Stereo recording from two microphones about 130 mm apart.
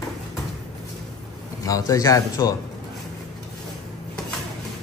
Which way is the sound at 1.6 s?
25° left (ahead or behind).